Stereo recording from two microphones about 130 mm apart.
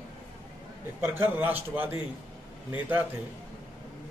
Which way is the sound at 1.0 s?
15° right (ahead or behind).